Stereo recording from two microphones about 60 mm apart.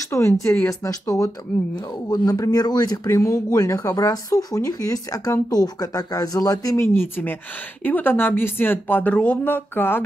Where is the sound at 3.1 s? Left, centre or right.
Left.